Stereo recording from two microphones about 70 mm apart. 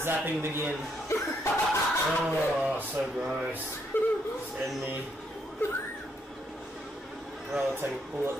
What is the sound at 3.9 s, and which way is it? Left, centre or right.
Speech, left.